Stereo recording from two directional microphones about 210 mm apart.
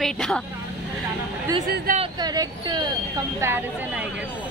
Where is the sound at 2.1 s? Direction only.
20° right (ahead or behind).